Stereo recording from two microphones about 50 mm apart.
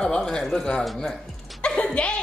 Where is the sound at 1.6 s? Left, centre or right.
Left.